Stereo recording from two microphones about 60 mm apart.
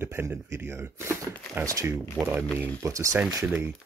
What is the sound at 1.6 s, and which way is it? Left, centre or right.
Speech, right.